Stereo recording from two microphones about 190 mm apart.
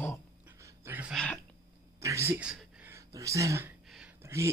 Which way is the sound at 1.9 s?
15° right (ahead or behind).